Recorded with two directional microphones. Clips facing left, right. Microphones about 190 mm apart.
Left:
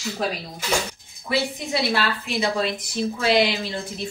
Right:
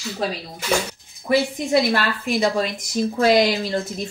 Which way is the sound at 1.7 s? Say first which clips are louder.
Right 5 dB; 45° right (ahead or behind).